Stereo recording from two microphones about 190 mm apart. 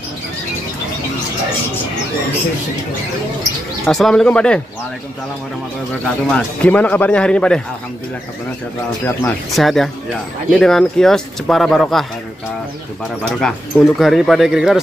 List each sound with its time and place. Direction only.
3.8 s speech: centre (ahead or behind)
6.0 s speech: 5° left (ahead or behind)
9.0 s speech: 5° left (ahead or behind)
13.4 s speech: 5° left (ahead or behind)